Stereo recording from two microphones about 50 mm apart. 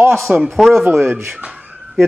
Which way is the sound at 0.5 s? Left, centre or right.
Centre.